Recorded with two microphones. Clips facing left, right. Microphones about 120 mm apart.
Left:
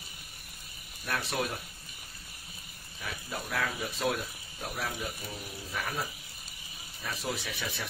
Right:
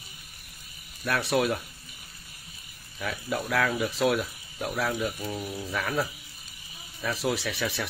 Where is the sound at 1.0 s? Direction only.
75° right (ahead or behind).